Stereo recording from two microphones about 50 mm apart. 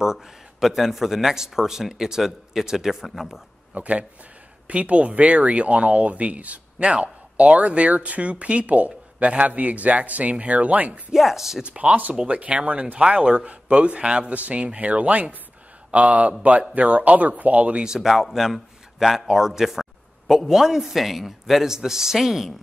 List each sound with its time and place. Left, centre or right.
0.0 s a man's voice: centre
3.7 s speech: right
11.1 s a man's voice: centre
11.6 s speech: right
17.8 s a man's voice: centre